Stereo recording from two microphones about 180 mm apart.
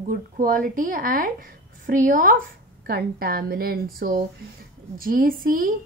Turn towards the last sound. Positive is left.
turn(degrees=-55)  # may be behind; listen again after turning